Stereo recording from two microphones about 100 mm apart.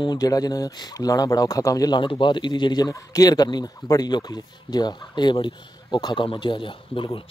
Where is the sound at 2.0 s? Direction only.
55° left (ahead or behind).